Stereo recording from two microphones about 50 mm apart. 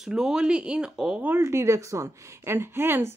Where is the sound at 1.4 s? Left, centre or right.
Right.